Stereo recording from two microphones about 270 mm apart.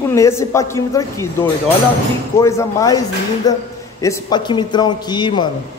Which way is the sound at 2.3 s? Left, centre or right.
Centre.